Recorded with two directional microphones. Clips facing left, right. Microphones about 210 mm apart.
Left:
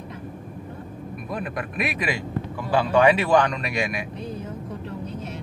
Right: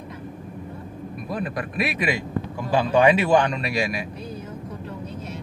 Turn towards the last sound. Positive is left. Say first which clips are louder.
# right 2 dB
turn(degrees=-35)  # may be behind; listen again after turning